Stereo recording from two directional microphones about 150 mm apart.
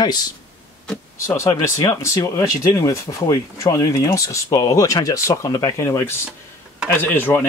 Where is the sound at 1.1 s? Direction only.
20° left (ahead or behind).